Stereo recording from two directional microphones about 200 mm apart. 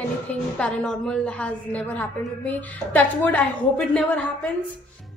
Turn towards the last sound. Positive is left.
turn(degrees=5)  # may be behind; listen again after turning